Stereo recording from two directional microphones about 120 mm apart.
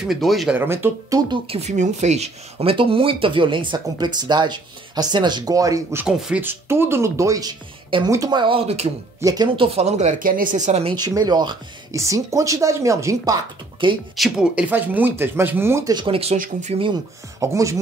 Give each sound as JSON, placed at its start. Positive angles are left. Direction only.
{"t": 0.0, "sound": "speech", "side_deg": 0}
{"t": 0.6, "sound": "speech", "side_deg": -20}
{"t": 1.5, "sound": "speech", "side_deg": -65}
{"t": 6.0, "sound": "speech", "side_deg": -5}
{"t": 6.4, "sound": "speech", "side_deg": -20}
{"t": 9.2, "sound": "speech", "side_deg": -30}
{"t": 9.6, "sound": "speech", "side_deg": -55}
{"t": 11.0, "sound": "speech", "side_deg": -35}
{"t": 13.8, "sound": "speech", "side_deg": -40}
{"t": 14.1, "sound": "speech", "side_deg": -5}
{"t": 15.9, "sound": "speech", "side_deg": -40}
{"t": 16.2, "sound": "speech", "side_deg": -60}
{"t": 17.4, "sound": "speech", "side_deg": -25}